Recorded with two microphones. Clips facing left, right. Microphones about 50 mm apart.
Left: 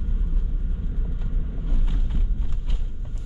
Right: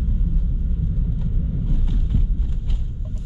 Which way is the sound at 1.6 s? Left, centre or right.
Centre.